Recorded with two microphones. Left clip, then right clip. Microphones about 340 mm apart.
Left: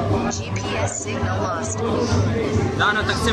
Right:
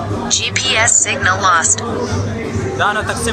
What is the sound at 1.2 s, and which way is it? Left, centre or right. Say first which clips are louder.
Speech: right 13 dB; right.